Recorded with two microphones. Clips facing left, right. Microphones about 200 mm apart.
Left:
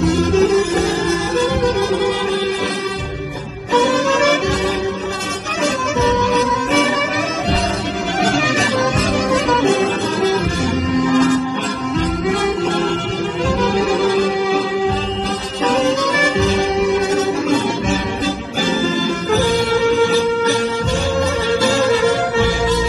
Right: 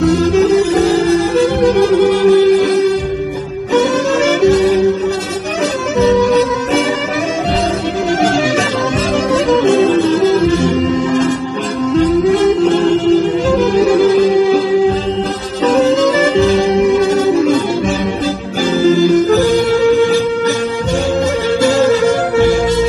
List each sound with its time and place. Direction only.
0.2 s music: 35° right (ahead or behind)
4.1 s music: 40° right (ahead or behind)
19.5 s music: 40° right (ahead or behind)